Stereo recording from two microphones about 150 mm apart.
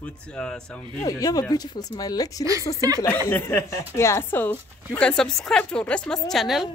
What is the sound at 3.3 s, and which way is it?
A woman's voice, 20° left (ahead or behind).